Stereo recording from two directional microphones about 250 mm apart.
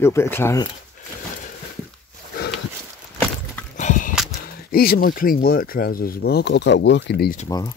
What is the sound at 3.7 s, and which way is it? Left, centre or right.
Horse, left.